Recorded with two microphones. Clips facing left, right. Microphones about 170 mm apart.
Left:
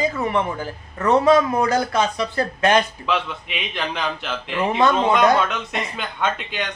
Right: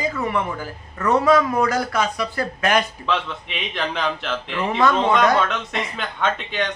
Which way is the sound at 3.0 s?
5° left (ahead or behind).